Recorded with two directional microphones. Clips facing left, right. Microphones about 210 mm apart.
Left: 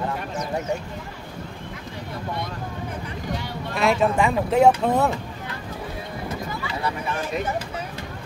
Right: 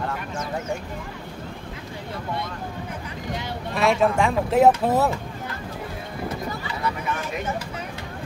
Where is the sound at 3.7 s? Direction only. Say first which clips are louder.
Even; centre (ahead or behind).